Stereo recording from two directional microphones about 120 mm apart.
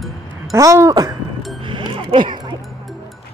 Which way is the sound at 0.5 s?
25° right (ahead or behind).